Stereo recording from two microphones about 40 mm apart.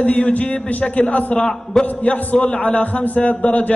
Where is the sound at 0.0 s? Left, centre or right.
Left.